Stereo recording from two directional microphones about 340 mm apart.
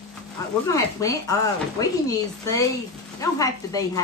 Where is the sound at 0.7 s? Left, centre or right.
Centre.